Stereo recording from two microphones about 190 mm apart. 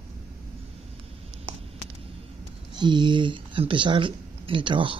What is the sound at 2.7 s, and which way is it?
Speech, 25° right (ahead or behind).